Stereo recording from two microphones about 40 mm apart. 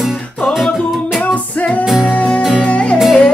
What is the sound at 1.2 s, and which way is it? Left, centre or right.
Music, left.